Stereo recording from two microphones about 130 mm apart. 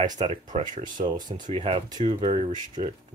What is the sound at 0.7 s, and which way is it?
Speech, 80° right.